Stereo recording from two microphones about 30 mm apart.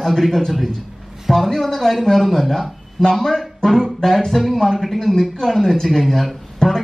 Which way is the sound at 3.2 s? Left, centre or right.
Centre.